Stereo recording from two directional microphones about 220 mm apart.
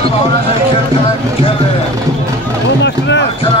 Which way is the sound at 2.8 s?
55° left (ahead or behind).